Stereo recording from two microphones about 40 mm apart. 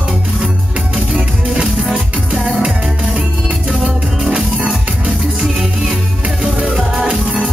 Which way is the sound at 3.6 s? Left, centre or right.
Centre.